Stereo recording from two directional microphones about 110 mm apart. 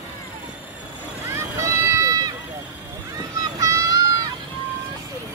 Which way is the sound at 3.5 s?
35° right (ahead or behind).